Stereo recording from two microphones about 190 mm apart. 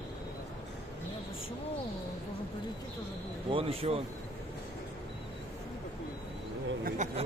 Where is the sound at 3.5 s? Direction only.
30° right (ahead or behind).